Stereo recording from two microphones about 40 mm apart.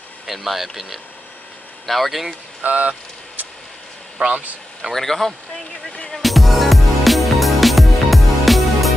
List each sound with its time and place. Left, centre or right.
0.3 s speech: centre
2.6 s vehicle: right
4.2 s speech: right
4.9 s speech: centre
6.1 s music: centre